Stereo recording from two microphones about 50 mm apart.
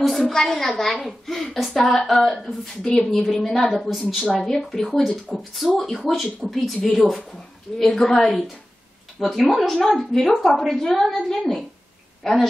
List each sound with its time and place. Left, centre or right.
0.0 s a woman's voice: centre